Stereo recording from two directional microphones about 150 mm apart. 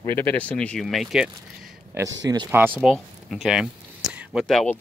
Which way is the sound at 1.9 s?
25° right (ahead or behind).